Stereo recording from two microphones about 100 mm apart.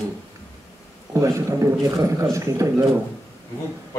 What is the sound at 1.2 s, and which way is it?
A man's voice, 30° right (ahead or behind).